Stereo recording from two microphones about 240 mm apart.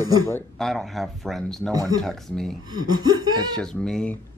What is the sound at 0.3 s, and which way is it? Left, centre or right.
Speech, centre.